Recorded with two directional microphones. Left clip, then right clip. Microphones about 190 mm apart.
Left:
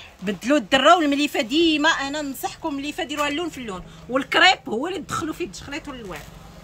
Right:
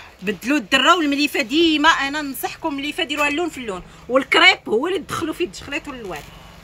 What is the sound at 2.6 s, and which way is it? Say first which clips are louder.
Speech: right 6 dB; 10° right (ahead or behind).